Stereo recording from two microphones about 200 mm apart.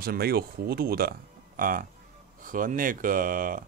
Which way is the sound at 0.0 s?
50° right (ahead or behind).